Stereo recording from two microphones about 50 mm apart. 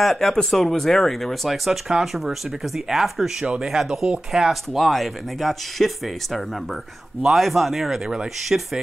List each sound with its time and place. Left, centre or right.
0.0 s speech: centre
8.5 s speech: centre